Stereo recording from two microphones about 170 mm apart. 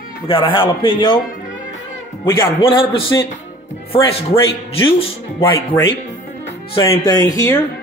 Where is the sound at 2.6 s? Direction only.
30° left (ahead or behind).